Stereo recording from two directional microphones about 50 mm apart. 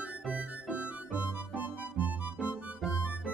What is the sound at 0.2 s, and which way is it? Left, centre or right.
Music, right.